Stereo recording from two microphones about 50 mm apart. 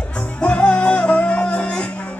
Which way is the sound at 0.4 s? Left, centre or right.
Left.